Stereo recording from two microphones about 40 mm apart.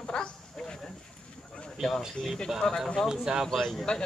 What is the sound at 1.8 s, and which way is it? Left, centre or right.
Speech, centre.